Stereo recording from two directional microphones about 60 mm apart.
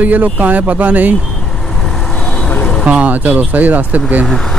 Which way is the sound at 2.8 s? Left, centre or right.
Right.